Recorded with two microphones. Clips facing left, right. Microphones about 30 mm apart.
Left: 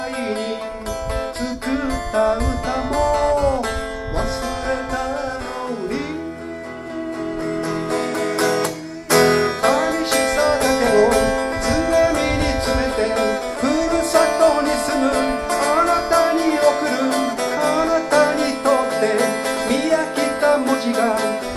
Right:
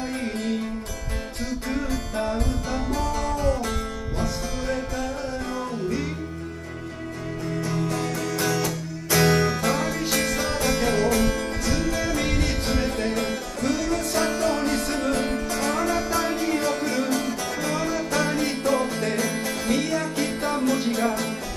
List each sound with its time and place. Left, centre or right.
1.7 s music: left
7.7 s music: left
12.9 s music: left
18.8 s music: left
20.5 s music: left